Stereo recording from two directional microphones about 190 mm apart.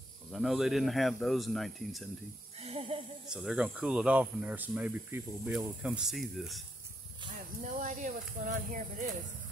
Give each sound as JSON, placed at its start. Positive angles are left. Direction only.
{"t": 0.3, "sound": "speech", "side_deg": 0}
{"t": 2.6, "sound": "a sound", "side_deg": -30}
{"t": 3.3, "sound": "speech", "side_deg": -5}
{"t": 7.3, "sound": "speech", "side_deg": -40}